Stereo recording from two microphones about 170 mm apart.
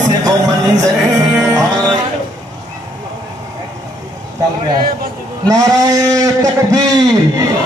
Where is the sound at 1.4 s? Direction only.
20° right (ahead or behind).